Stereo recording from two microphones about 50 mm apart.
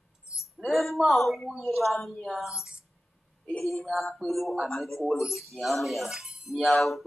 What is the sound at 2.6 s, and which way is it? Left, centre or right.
Speech, centre.